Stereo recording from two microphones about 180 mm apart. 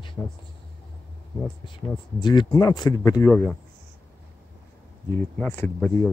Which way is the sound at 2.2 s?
25° left (ahead or behind).